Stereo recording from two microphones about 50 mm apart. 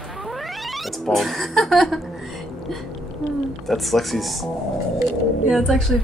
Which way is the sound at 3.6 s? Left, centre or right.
Centre.